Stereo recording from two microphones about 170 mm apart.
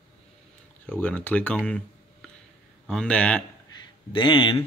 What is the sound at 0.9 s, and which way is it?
Speech, 10° left (ahead or behind).